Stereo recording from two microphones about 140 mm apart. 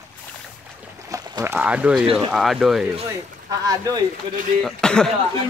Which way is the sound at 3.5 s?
25° right (ahead or behind).